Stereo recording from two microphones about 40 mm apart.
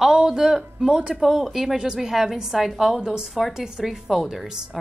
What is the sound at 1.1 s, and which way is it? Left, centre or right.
A woman's voice, centre.